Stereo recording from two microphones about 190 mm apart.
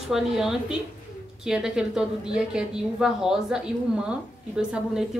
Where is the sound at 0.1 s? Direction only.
Centre (ahead or behind).